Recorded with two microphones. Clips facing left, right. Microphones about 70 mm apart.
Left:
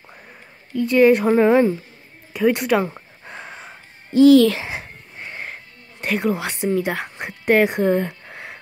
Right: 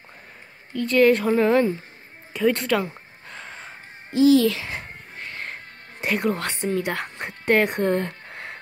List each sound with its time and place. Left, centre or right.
0.7 s speech: centre
2.8 s a sound: left
4.2 s speech: left
4.6 s wheeze: centre
5.9 s speech: centre